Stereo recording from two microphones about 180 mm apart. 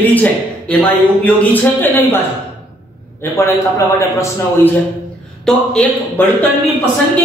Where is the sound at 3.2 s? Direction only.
15° left (ahead or behind).